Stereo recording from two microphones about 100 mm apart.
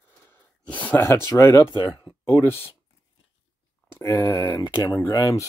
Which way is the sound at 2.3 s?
25° left (ahead or behind).